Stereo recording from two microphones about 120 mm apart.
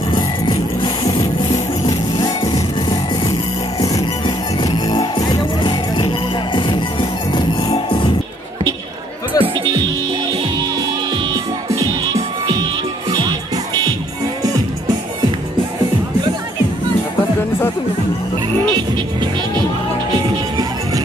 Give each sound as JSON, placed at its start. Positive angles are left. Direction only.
{"t": 1.0, "sound": "music", "side_deg": 35}
{"t": 4.6, "sound": "music", "side_deg": 35}
{"t": 9.4, "sound": "music", "side_deg": -40}